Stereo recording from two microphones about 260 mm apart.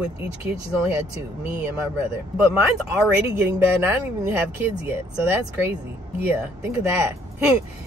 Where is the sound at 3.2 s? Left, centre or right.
Centre.